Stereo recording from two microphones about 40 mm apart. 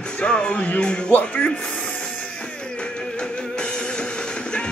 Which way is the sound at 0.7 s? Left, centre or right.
Left.